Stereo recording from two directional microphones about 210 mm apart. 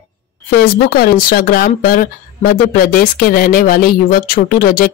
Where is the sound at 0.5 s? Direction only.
45° left (ahead or behind).